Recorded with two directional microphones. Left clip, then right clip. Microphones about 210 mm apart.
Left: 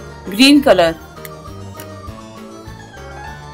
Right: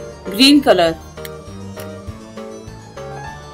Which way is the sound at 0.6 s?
15° left (ahead or behind).